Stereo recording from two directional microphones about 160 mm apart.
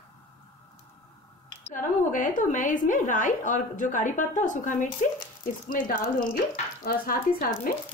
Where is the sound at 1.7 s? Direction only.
55° left (ahead or behind).